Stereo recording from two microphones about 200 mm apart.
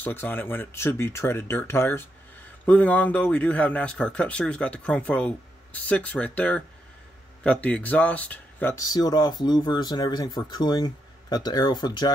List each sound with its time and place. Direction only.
0.0 s speech: 10° left (ahead or behind)